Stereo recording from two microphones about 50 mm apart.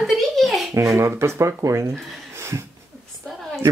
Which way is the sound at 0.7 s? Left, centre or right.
Right.